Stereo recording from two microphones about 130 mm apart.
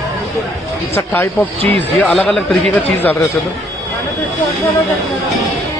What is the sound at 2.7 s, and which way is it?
Speech, 15° left (ahead or behind).